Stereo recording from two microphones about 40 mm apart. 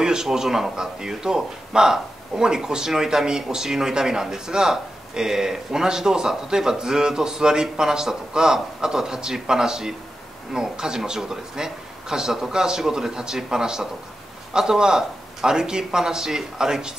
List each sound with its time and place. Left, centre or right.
0.0 s speech: centre